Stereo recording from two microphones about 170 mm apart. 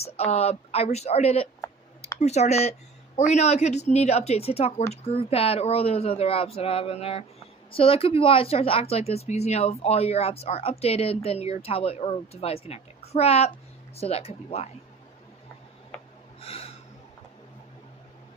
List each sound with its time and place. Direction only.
0.0 s speech: 35° left (ahead or behind)
16.3 s snort: 35° left (ahead or behind)